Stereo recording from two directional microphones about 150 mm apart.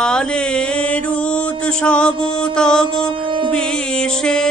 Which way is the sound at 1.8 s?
5° left (ahead or behind).